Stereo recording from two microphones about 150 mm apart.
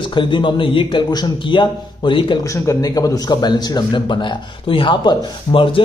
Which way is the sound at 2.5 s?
20° left (ahead or behind).